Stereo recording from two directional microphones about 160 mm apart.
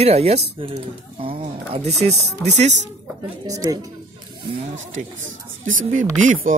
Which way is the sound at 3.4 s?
20° right (ahead or behind).